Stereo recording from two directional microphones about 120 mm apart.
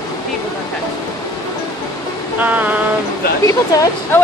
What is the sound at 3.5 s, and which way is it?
Speech, 25° left (ahead or behind).